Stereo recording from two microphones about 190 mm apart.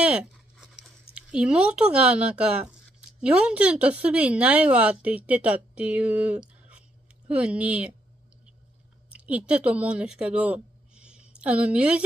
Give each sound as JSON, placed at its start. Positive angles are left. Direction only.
{"t": 0.0, "sound": "a sound", "side_deg": -5}
{"t": 1.1, "sound": "speech", "side_deg": -5}
{"t": 9.1, "sound": "speech", "side_deg": -5}